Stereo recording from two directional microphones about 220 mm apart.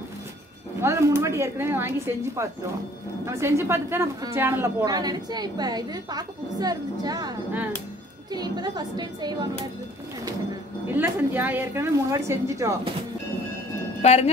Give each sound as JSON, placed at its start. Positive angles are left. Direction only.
{"t": 0.7, "sound": "a woman's voice", "side_deg": -15}
{"t": 11.0, "sound": "a woman's voice", "side_deg": -10}
{"t": 14.0, "sound": "a woman's voice", "side_deg": 30}